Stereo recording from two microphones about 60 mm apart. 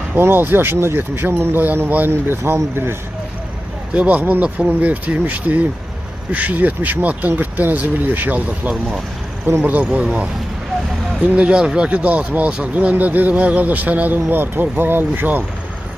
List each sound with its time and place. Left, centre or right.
0.2 s speech: right
3.9 s speech: right
9.5 s speech: right
10.0 s speech: centre